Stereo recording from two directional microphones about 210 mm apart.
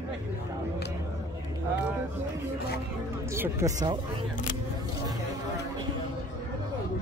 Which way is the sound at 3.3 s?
10° right (ahead or behind).